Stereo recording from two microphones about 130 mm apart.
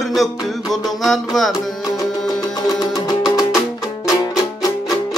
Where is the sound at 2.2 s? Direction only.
30° left (ahead or behind).